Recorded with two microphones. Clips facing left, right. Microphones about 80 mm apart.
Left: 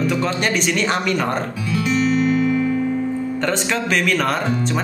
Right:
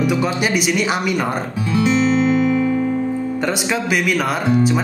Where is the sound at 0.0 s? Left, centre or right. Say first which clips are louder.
Right 2 dB; centre.